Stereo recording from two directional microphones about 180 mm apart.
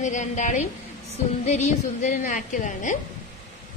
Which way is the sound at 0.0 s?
40° left (ahead or behind).